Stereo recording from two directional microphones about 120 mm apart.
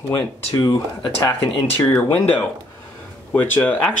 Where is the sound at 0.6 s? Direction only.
30° left (ahead or behind).